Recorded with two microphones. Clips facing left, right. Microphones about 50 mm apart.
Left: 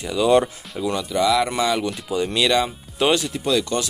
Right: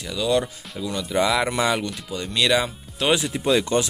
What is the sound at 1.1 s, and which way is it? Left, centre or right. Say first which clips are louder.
Speech: left 1 dB; centre.